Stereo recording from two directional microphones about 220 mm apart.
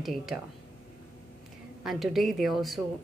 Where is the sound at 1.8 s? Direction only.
Centre (ahead or behind).